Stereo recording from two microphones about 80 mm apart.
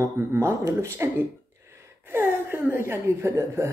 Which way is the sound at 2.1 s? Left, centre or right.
Right.